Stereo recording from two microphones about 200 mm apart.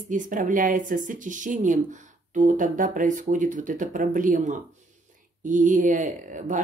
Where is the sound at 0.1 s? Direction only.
40° right (ahead or behind).